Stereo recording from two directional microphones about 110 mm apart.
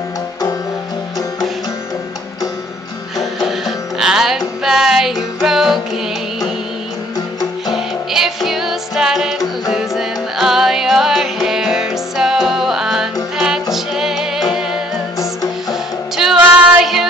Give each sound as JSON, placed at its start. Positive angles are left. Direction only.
{"t": 3.2, "sound": "music", "side_deg": 0}
{"t": 7.7, "sound": "music", "side_deg": -5}